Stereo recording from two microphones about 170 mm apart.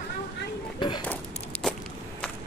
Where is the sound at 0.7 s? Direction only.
30° left (ahead or behind).